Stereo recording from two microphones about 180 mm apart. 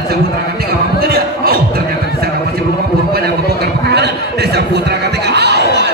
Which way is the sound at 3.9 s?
65° right (ahead or behind).